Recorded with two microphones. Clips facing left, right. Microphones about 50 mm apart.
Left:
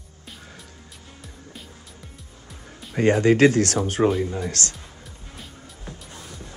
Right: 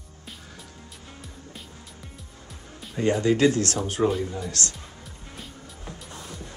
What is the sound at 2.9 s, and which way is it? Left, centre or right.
Speech, left.